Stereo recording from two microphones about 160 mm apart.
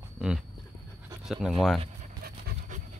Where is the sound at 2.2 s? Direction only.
70° right (ahead or behind).